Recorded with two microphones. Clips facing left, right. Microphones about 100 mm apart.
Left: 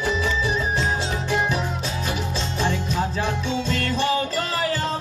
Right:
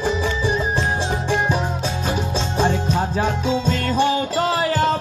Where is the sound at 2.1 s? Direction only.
40° right (ahead or behind).